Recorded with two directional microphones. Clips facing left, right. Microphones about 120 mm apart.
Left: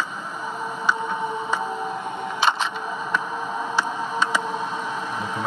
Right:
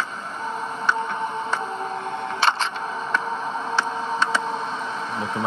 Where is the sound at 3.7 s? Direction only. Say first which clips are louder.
Even; 10° left (ahead or behind).